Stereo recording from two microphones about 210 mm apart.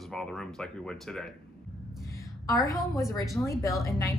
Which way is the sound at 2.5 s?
15° left (ahead or behind).